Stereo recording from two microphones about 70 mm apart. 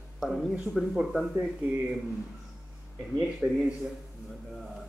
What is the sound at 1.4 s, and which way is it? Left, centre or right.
Speech, centre.